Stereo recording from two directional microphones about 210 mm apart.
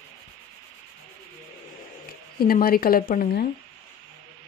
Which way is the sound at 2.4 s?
45° left (ahead or behind).